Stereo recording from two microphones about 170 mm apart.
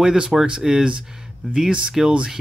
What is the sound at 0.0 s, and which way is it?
Speech, 5° right (ahead or behind).